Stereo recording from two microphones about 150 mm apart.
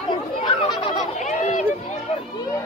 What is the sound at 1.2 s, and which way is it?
Run, 55° left (ahead or behind).